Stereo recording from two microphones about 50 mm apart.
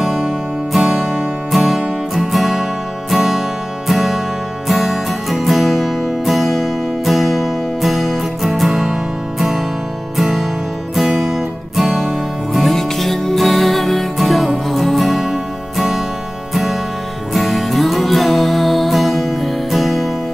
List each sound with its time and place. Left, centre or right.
0.0 s music: centre
10.1 s music: centre
17.3 s music: centre